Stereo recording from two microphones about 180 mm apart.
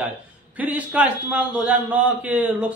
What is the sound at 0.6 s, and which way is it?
Speech, 10° right (ahead or behind).